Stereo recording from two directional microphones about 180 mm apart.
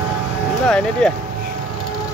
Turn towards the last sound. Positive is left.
turn(degrees=5)  # may be behind; listen again after turning